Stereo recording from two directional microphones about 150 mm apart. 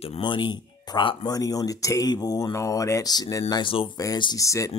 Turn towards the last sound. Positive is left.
turn(degrees=20)  # may be behind; listen again after turning